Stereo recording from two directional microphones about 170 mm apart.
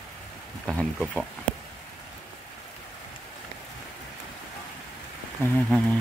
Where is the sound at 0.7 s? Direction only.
Centre (ahead or behind).